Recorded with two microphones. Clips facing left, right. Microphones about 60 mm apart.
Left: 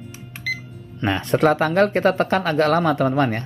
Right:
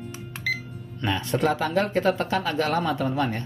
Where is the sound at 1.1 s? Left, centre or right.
Left.